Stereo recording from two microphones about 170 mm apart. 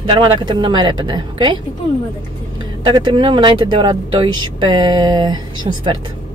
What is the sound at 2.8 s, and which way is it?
Speech, 25° right (ahead or behind).